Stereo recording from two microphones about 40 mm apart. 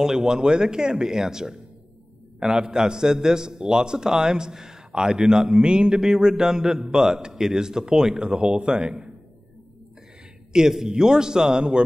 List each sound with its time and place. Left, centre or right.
0.0 s a man's voice: centre
10.5 s a man's voice: centre